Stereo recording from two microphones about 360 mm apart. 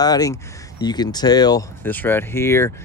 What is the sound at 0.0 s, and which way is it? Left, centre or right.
Speech, centre.